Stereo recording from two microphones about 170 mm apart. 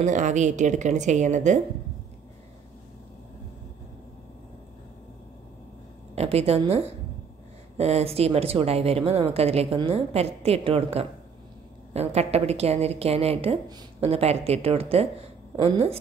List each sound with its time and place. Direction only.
0.0 s a woman's voice: 45° right (ahead or behind)
6.1 s a woman's voice: 35° right (ahead or behind)
7.7 s a woman's voice: 40° right (ahead or behind)